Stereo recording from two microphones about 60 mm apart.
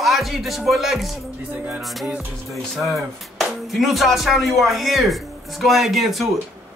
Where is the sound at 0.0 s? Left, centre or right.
Centre.